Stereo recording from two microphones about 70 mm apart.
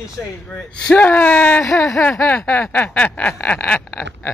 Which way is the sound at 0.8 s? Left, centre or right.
Left.